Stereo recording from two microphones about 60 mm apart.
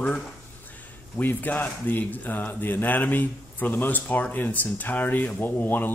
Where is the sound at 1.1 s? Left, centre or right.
Left.